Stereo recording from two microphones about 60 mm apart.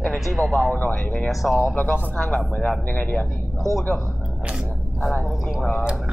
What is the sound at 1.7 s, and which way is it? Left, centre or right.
Speech, left.